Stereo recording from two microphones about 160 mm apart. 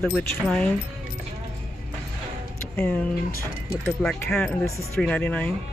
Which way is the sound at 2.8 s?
10° left (ahead or behind).